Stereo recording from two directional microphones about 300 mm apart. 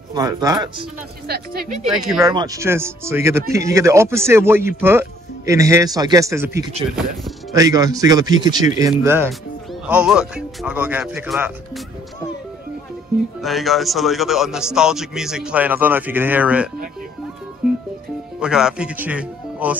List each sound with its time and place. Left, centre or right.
0.1 s speech: centre
1.2 s speech: right
1.9 s a man's voice: centre
2.3 s a man's voice: centre
13.4 s a man's voice: centre
18.4 s speech: centre